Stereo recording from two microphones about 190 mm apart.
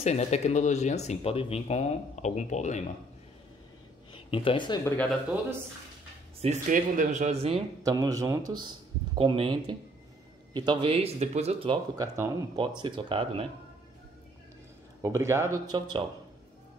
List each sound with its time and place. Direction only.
0.0 s speech: 35° left (ahead or behind)
4.1 s speech: 25° left (ahead or behind)
4.8 s speech: 10° left (ahead or behind)
6.4 s speech: 40° right (ahead or behind)
7.8 s speech: 20° right (ahead or behind)
15.0 s speech: 15° right (ahead or behind)